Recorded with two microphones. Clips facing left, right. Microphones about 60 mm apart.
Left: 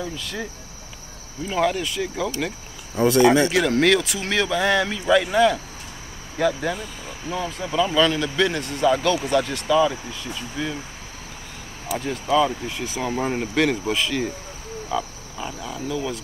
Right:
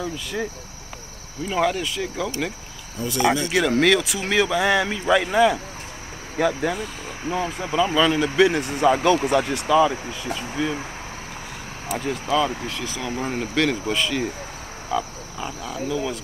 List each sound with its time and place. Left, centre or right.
0.0 s speech: centre
1.5 s speech: centre
3.0 s speech: left
3.5 s speech: centre
7.2 s speech: right
9.3 s speech: centre
12.1 s speech: centre
12.6 s speech: centre
13.2 s speech: centre
14.9 s frog: centre